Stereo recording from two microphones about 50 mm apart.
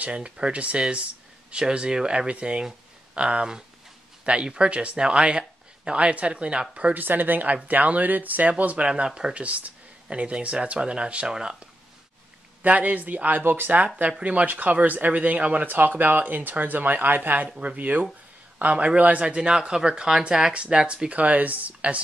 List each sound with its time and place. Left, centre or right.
0.0 s speech: right
6.9 s speech: right
8.8 s speech: centre
12.6 s speech: right
19.3 s speech: centre